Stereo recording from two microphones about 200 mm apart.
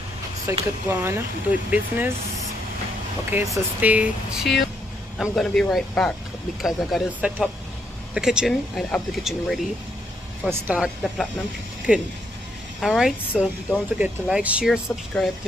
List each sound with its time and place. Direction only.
0.5 s speech: 15° right (ahead or behind)
3.3 s speech: 10° right (ahead or behind)
12.8 s speech: centre (ahead or behind)